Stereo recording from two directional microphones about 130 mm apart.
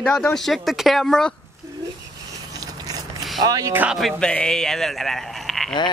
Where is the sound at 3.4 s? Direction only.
30° right (ahead or behind).